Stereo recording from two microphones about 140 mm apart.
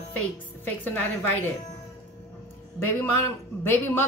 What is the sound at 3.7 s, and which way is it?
Speech, 15° left (ahead or behind).